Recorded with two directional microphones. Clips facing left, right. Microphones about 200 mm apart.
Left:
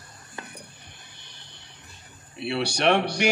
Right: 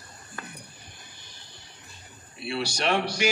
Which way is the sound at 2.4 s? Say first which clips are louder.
Left 5 dB; 65° left (ahead or behind).